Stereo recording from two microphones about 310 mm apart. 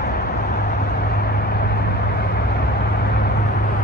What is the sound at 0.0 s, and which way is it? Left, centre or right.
Vehicle, left.